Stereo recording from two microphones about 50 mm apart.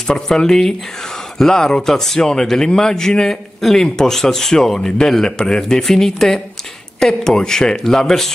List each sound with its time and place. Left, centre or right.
0.0 s speech: centre